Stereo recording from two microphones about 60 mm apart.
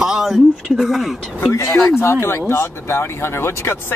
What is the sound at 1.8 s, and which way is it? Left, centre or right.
Speech, left.